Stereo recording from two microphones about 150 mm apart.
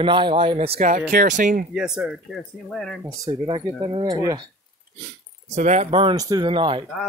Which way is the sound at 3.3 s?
35° right (ahead or behind).